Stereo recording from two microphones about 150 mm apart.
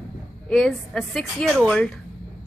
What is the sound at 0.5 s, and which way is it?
A woman's voice, centre (ahead or behind).